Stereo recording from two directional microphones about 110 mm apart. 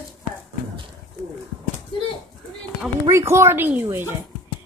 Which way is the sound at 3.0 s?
25° right (ahead or behind).